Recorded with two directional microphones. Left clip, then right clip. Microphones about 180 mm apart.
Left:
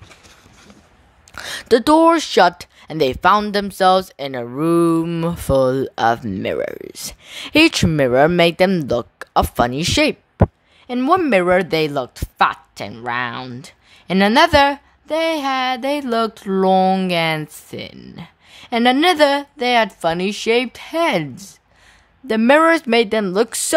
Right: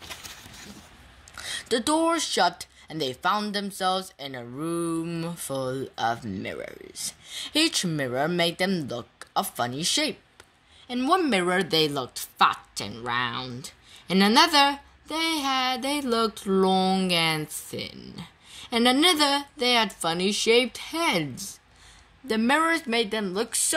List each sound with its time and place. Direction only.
1.3 s speech: 50° left (ahead or behind)